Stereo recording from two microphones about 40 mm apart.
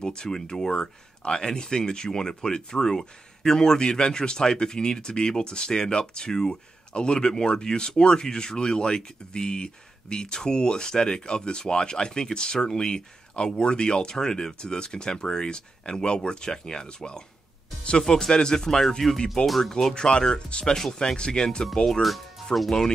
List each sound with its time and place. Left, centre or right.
0.0 s speech: left; by 19.7 s centre
19.7 s speech: centre
22.0 s speech: centre